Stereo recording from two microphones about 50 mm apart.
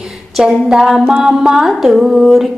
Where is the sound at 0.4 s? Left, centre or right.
Centre.